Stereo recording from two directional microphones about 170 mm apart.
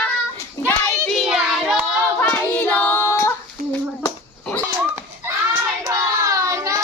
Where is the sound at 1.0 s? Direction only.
Centre (ahead or behind).